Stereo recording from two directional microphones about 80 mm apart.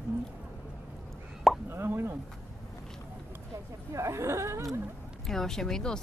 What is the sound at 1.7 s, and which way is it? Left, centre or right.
Plop, right.